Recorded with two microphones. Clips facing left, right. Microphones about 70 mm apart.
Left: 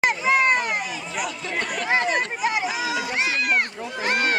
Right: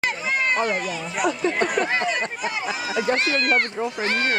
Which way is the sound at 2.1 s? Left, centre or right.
Centre.